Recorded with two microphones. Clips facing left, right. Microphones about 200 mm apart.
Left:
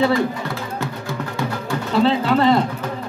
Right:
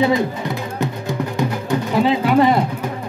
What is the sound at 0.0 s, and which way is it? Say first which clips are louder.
Music: right 1 dB; 20° right (ahead or behind).